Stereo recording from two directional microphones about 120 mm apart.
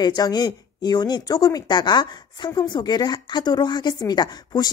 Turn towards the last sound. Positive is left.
turn(degrees=35)  # may be behind; listen again after turning